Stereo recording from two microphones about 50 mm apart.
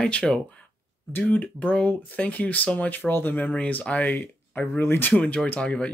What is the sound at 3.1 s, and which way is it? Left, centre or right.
Speech, left.